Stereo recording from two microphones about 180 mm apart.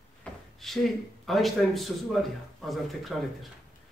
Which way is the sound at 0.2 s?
Centre (ahead or behind).